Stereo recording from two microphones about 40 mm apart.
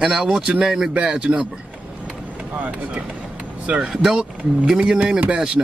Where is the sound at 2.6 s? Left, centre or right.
Right.